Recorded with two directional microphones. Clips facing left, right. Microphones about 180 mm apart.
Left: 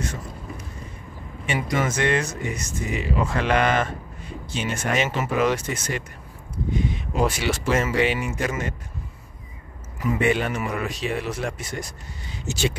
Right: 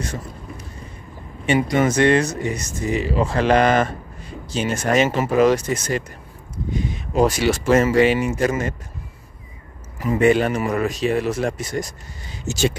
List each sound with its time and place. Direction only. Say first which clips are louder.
1.4 s speech: right 7 dB; 35° right (ahead or behind)
10.2 s speech: right 8 dB; 40° right (ahead or behind)